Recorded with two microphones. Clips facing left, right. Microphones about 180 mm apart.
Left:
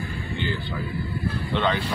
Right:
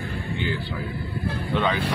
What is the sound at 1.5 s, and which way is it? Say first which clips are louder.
Speech: even; 5° right (ahead or behind).